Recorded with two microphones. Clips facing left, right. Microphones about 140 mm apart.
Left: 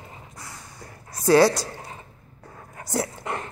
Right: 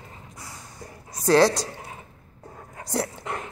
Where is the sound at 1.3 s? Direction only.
10° left (ahead or behind).